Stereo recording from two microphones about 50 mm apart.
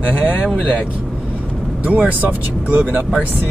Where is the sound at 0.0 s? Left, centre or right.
Right.